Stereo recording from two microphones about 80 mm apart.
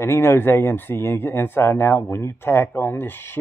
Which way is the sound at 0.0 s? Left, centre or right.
Left.